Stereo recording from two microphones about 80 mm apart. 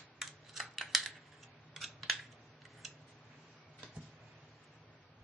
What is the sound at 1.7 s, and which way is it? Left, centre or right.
Scissors, centre.